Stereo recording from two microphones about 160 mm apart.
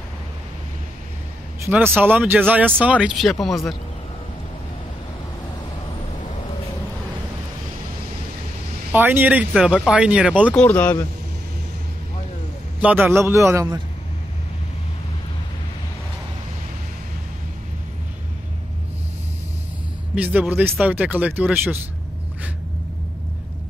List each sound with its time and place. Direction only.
1.7 s speech: 10° right (ahead or behind)
8.9 s speech: 10° right (ahead or behind)
10.5 s speech: 10° left (ahead or behind)
12.8 s speech: 10° right (ahead or behind)
20.2 s speech: 10° right (ahead or behind)